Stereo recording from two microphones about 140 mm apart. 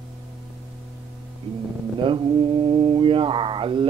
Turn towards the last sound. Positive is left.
turn(degrees=-35)  # may be behind; listen again after turning